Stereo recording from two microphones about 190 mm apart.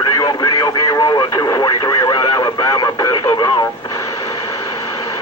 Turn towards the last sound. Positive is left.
turn(degrees=20)  # may be behind; listen again after turning